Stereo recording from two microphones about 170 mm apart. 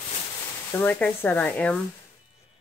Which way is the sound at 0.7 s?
10° left (ahead or behind).